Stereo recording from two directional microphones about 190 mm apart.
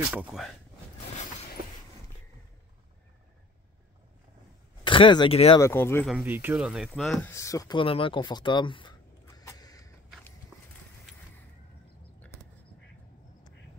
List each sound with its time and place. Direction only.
0.1 s speech: 5° right (ahead or behind)
4.8 s speech: 25° left (ahead or behind)
5.6 s speech: 15° left (ahead or behind)
6.0 s speech: 5° right (ahead or behind); by 9.8 s 20° left (ahead or behind)